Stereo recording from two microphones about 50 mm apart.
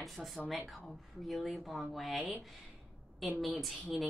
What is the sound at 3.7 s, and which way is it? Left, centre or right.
Speech, centre.